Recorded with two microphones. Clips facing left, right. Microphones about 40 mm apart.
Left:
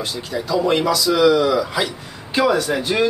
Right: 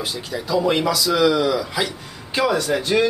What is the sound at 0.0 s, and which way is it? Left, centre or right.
Speech, centre.